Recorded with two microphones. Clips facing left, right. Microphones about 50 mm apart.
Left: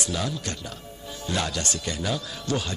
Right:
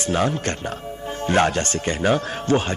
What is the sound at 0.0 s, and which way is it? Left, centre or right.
Speech, right.